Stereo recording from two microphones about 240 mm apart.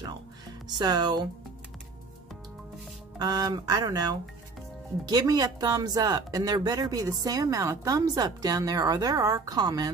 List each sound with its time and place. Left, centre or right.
0.7 s speech: centre
3.2 s speech: centre